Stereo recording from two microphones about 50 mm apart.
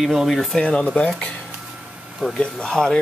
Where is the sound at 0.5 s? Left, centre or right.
Left.